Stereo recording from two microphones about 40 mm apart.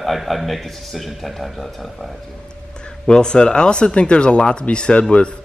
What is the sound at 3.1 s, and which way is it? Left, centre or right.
A man's voice, left.